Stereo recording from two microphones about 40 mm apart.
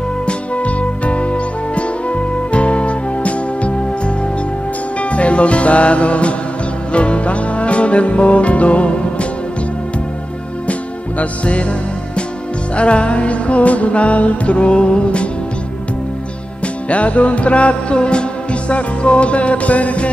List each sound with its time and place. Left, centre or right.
0.3 s music: left
10.7 s music: left
12.7 s music: left
16.6 s music: left